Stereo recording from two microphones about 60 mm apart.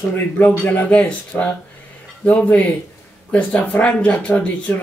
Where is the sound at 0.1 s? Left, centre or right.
Left.